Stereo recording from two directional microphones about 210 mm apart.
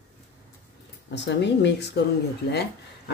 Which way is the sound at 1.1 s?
55° left (ahead or behind).